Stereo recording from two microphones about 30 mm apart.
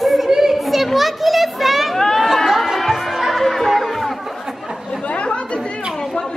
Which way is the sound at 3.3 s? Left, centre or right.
Centre.